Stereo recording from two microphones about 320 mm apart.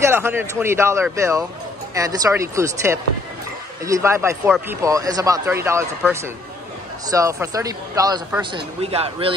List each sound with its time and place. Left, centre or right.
0.0 s speech: centre